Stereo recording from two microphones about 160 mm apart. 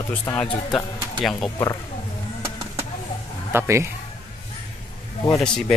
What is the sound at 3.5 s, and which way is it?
Speech, 15° right (ahead or behind).